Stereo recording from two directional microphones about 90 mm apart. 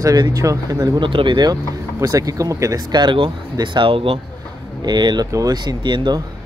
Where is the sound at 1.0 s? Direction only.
65° right (ahead or behind).